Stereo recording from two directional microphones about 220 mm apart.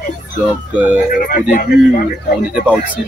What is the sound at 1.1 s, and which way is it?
Speech, 40° left (ahead or behind).